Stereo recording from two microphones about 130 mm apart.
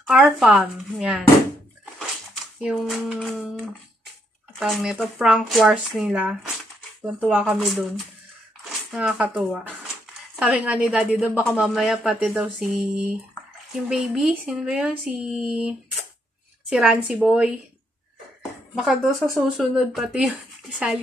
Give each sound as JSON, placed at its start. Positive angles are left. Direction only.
{"t": 0.2, "sound": "speech", "side_deg": 0}
{"t": 2.6, "sound": "speech", "side_deg": 0}
{"t": 4.6, "sound": "a woman's voice", "side_deg": 0}
{"t": 18.8, "sound": "speech", "side_deg": -5}